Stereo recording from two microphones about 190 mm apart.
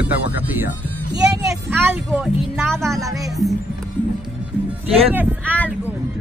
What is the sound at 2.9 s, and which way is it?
Speech, centre (ahead or behind).